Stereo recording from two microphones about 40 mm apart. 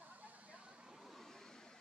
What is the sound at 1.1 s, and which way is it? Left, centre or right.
Vehicle, centre.